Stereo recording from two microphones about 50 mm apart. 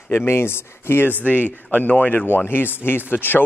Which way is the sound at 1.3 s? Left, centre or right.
Right.